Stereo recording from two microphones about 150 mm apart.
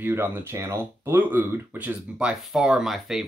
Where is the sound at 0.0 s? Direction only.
15° right (ahead or behind).